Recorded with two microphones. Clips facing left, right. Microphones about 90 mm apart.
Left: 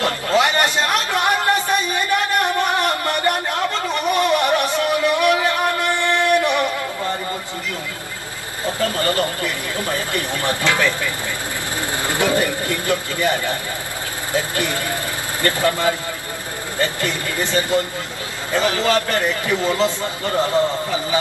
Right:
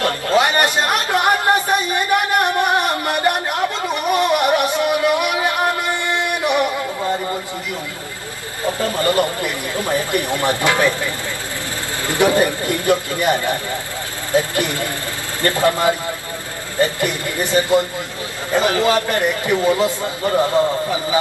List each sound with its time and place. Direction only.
0.3 s a sound: 20° right (ahead or behind)
4.1 s music: 15° right (ahead or behind)
8.6 s speech: 20° right (ahead or behind)
12.2 s a man's voice: 20° right (ahead or behind)